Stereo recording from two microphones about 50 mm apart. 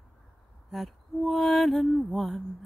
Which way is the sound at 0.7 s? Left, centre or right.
Centre.